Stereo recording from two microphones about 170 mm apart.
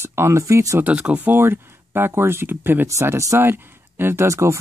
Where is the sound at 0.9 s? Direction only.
5° right (ahead or behind).